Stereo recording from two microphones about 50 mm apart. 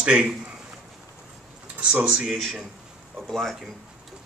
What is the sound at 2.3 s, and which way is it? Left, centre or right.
A man's voice, centre.